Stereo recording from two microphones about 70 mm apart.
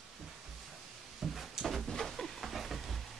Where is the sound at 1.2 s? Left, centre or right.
Centre.